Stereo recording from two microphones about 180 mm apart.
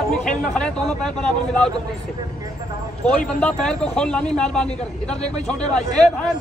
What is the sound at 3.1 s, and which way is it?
Speech, 5° left (ahead or behind).